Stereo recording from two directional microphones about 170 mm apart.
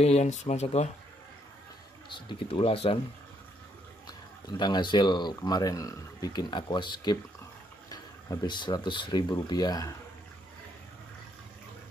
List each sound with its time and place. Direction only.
0.0 s speech: 40° left (ahead or behind)
2.1 s speech: 30° left (ahead or behind)
4.5 s speech: 25° left (ahead or behind)